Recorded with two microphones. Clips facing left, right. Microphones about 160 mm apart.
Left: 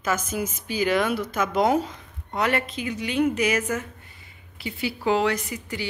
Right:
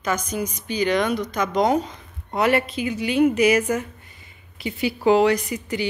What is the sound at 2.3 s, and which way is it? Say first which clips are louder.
Speech: right 5 dB; 10° right (ahead or behind).